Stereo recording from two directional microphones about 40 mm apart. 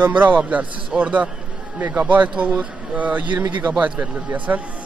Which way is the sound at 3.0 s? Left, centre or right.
Right.